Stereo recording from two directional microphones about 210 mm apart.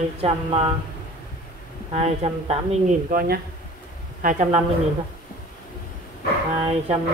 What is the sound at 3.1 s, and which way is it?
Speech, 45° right (ahead or behind).